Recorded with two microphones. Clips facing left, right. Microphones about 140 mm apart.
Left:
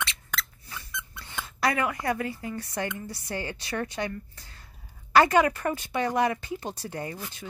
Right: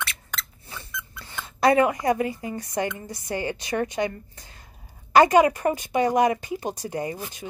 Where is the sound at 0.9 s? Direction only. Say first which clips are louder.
Even; 20° left (ahead or behind).